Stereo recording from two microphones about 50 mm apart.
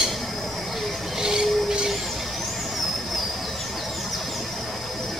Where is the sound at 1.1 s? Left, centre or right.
Centre.